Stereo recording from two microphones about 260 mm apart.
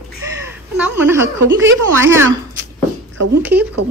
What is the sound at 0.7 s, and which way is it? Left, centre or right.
Speech, centre.